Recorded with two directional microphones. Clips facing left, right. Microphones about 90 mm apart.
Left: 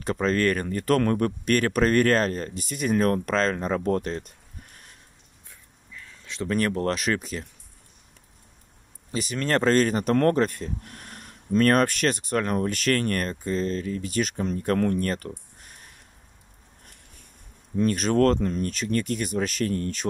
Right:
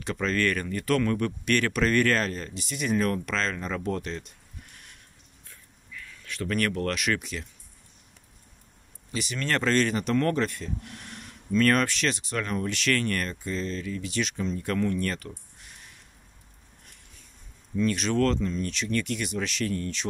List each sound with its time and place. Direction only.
0.0 s speech: 40° left (ahead or behind)
5.9 s speech: 30° left (ahead or behind)
9.1 s speech: 40° left (ahead or behind)
17.7 s speech: 45° left (ahead or behind)